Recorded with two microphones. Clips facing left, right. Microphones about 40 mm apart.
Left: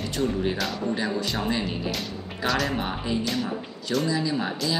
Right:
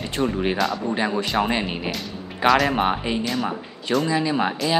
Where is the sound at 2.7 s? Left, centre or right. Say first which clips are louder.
Right 6 dB; right.